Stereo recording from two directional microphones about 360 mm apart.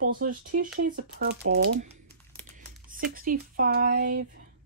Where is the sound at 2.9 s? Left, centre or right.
Right.